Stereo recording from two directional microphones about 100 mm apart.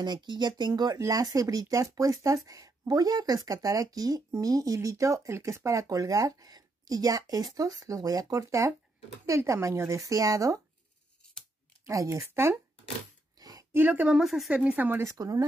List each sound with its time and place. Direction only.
0.0 s speech: 45° right (ahead or behind)
11.8 s speech: 35° right (ahead or behind)
13.4 s a sound: 40° right (ahead or behind)
13.7 s speech: 15° right (ahead or behind); by 14.5 s centre (ahead or behind)
14.5 s speech: 15° right (ahead or behind); by 15.4 s 35° right (ahead or behind)